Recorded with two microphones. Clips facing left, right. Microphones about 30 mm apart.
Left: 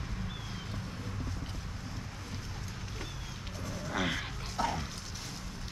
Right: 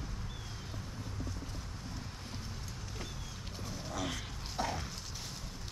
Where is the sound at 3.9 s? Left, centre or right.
Left.